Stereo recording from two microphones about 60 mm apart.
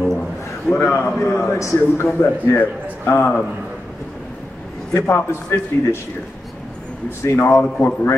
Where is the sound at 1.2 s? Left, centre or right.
Left.